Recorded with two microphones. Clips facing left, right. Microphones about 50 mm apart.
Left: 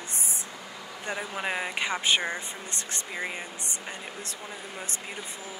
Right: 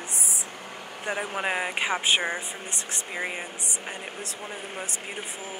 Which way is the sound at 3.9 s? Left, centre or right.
Right.